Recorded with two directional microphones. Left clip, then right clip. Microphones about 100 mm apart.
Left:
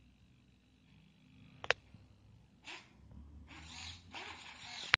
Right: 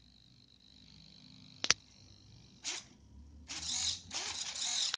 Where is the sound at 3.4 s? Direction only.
25° right (ahead or behind).